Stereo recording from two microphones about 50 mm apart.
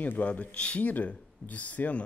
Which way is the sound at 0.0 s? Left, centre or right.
Left.